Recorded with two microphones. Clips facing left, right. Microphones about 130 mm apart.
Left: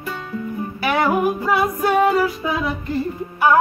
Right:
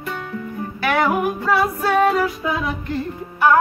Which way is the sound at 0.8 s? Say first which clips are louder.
Left 1 dB; 10° left (ahead or behind).